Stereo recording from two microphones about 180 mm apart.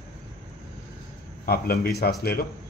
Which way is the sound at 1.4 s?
60° left (ahead or behind).